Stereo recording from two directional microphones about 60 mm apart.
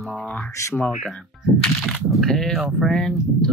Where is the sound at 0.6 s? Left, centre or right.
Left.